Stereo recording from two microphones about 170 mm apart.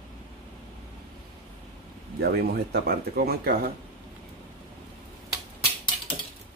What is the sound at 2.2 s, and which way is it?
Speech, 65° right (ahead or behind).